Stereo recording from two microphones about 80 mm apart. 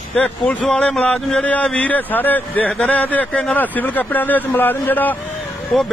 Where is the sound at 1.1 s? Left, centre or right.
Centre.